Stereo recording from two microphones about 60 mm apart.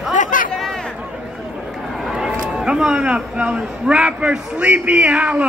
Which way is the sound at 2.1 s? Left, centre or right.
Centre.